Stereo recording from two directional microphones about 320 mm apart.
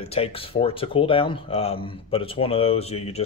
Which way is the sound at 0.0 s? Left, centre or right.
Centre.